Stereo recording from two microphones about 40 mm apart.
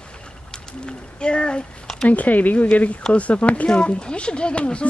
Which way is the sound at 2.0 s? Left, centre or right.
Left.